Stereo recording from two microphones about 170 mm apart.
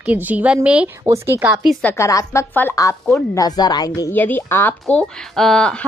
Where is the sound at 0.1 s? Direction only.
10° right (ahead or behind).